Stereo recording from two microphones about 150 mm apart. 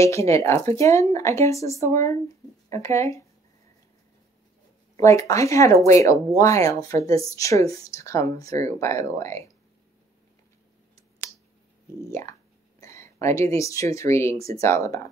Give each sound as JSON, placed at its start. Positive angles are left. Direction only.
{"t": 0.0, "sound": "speech", "side_deg": 20}
{"t": 4.9, "sound": "speech", "side_deg": 20}
{"t": 11.0, "sound": "a sound", "side_deg": 20}
{"t": 12.1, "sound": "speech", "side_deg": 20}